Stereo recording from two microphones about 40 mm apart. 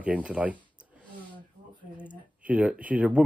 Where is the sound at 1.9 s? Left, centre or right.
Right.